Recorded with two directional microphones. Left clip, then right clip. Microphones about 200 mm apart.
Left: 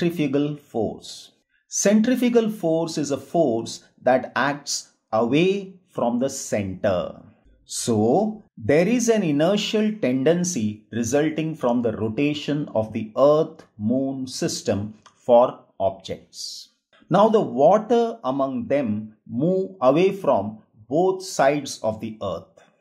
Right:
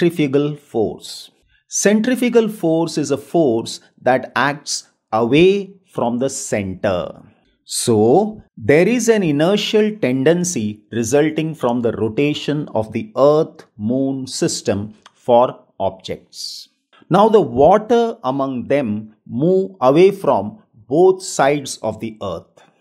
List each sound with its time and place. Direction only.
0.0 s speech: 35° right (ahead or behind)